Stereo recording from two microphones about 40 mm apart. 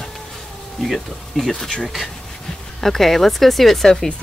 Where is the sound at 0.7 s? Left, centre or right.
Centre.